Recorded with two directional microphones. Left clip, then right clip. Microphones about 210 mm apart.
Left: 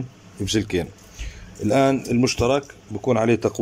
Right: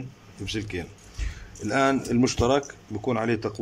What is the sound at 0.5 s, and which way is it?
Speech, 25° left (ahead or behind).